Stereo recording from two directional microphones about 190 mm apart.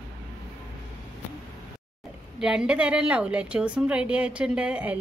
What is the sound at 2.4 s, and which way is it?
A woman's voice, 5° right (ahead or behind).